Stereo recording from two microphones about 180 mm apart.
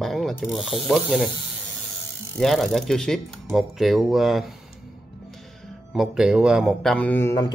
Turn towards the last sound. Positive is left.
turn(degrees=15)  # may be behind; listen again after turning